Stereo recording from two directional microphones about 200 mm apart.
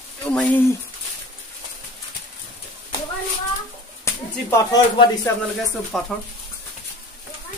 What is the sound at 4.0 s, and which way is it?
Speech, 15° left (ahead or behind).